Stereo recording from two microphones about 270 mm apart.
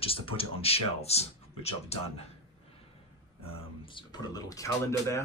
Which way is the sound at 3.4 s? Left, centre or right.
Centre.